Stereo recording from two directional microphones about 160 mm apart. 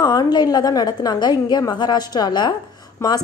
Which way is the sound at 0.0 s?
25° left (ahead or behind).